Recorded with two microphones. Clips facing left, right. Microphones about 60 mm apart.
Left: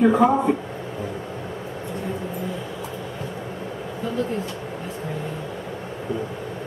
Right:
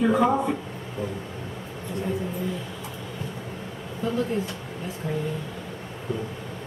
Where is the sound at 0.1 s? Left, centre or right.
Centre.